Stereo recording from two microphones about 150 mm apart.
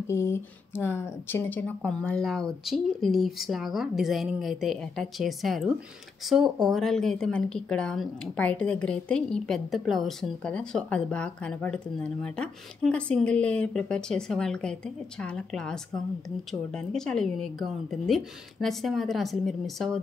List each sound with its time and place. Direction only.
0.0 s speech: 20° left (ahead or behind); by 20.0 s centre (ahead or behind)